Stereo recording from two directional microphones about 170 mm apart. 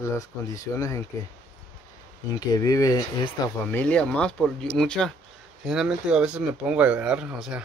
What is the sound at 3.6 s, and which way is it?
Speech, 10° left (ahead or behind).